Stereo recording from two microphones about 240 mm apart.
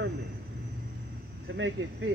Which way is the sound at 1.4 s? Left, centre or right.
Right.